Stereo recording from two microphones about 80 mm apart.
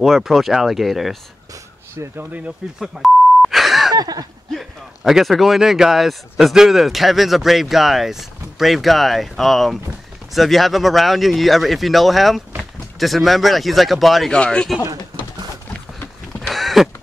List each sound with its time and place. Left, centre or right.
0.0 s speech: centre
2.1 s speech: centre
2.8 s beep: centre
3.9 s a sound: right
4.5 s speech: centre
14.3 s speech: centre
16.3 s a sound: centre